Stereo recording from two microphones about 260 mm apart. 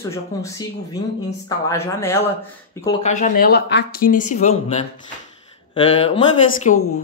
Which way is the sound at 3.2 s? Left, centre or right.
Left.